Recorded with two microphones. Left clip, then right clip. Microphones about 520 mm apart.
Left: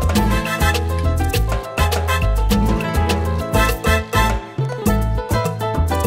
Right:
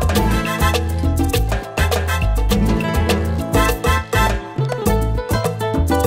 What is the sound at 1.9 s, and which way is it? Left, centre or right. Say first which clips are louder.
Music: left 1 dB; right.